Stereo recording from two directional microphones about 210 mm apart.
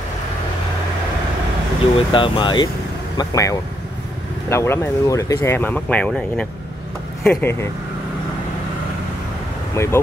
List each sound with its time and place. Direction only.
2.0 s speech: 25° left (ahead or behind)
9.8 s speech: 10° left (ahead or behind)